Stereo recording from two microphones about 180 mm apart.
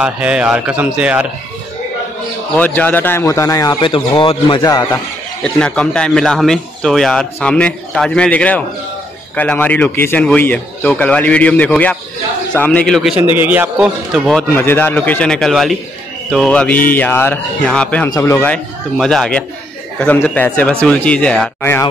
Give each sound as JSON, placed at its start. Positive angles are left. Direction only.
{"t": 0.0, "sound": "a man's voice", "side_deg": -5}
{"t": 2.5, "sound": "speech", "side_deg": 10}
{"t": 5.4, "sound": "speech", "side_deg": 5}
{"t": 13.4, "sound": "speech", "side_deg": -10}
{"t": 14.5, "sound": "speech", "side_deg": 10}